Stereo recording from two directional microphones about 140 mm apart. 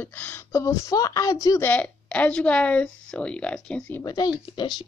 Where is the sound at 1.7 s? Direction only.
10° left (ahead or behind).